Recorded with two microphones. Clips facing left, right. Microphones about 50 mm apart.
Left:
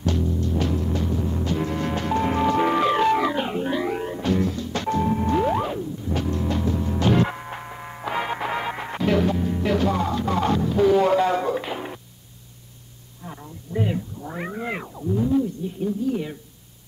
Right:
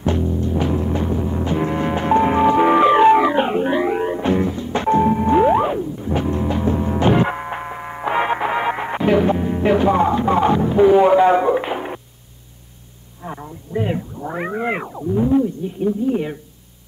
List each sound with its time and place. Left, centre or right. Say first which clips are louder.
0.0 s timpani: right 4 dB; right
13.2 s a sound: right 7 dB; right
13.8 s cat: right 5 dB; right